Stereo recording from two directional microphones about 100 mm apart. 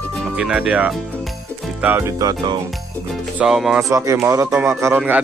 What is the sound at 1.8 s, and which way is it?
Speech, 20° right (ahead or behind).